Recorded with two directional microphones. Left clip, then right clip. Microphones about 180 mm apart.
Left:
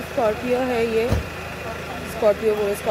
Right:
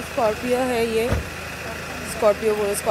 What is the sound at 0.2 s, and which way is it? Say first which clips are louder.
Speech: even; 20° right (ahead or behind).